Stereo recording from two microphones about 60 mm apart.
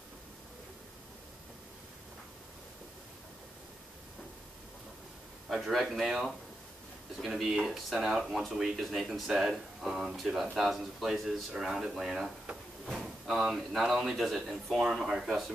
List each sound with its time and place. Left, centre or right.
5.5 s speech: centre